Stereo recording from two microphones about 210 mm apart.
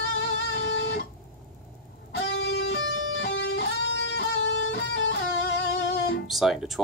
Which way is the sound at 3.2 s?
60° left (ahead or behind).